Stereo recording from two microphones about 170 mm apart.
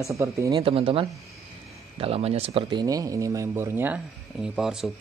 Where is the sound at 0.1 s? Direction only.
15° right (ahead or behind).